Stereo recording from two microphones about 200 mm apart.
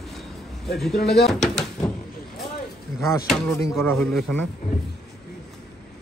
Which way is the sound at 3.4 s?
15° left (ahead or behind).